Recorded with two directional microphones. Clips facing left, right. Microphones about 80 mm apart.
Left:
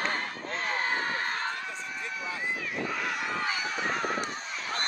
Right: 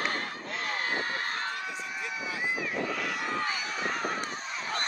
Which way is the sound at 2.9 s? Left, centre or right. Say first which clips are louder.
Even; left.